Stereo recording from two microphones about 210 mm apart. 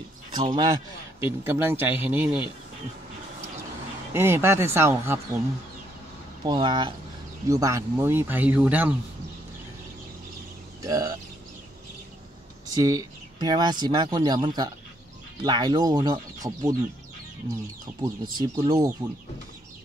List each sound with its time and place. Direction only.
0.3 s speech: 25° right (ahead or behind)
1.2 s speech: 10° right (ahead or behind)
4.1 s speech: 10° right (ahead or behind)
6.4 s speech: 20° right (ahead or behind)
10.8 s speech: 15° right (ahead or behind)
12.7 s speech: 15° right (ahead or behind)
18.0 s speech: 20° right (ahead or behind)